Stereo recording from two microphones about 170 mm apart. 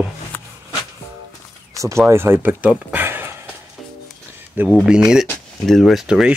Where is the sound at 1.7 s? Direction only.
20° right (ahead or behind).